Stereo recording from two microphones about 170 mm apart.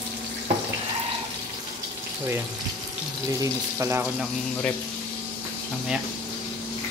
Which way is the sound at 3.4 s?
15° right (ahead or behind).